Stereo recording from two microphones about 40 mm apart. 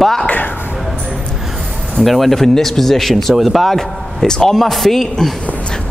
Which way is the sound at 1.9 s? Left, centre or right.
Centre.